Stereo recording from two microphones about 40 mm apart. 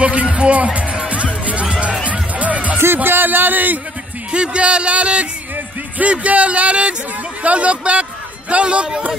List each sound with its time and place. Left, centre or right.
0.0 s music: right
3.0 s speech: right
4.3 s a man's voice: right